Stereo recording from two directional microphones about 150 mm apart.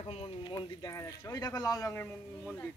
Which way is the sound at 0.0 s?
40° left (ahead or behind).